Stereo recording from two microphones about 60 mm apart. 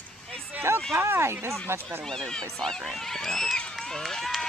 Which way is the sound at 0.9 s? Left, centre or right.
Right.